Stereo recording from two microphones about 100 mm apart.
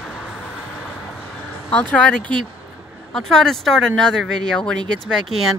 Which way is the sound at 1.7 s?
10° left (ahead or behind).